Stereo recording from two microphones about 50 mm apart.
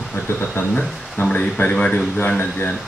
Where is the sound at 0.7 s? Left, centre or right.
Left.